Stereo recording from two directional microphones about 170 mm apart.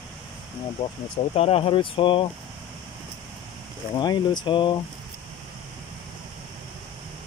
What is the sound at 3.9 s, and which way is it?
Speech, 25° left (ahead or behind).